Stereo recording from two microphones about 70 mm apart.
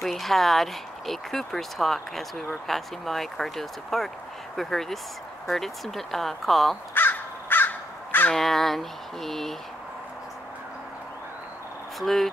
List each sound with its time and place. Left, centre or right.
0.0 s speech: centre
6.9 s crow: left
8.3 s speech: centre
12.0 s speech: centre